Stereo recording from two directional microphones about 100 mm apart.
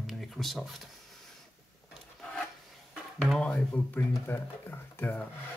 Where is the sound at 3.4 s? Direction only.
10° left (ahead or behind).